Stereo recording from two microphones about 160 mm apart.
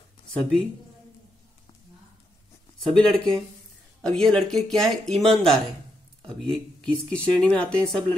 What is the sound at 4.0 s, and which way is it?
Speech, centre (ahead or behind).